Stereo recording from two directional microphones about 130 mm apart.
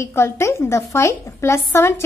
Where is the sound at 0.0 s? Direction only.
20° left (ahead or behind).